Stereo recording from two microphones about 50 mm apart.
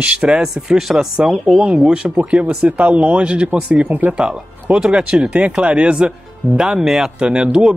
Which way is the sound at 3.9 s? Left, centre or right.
Right.